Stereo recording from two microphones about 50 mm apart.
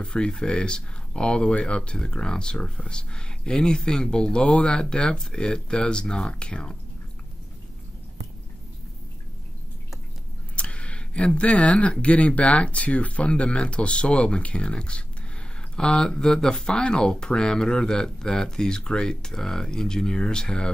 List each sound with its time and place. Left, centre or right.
0.0 s speech: centre
10.5 s speech: left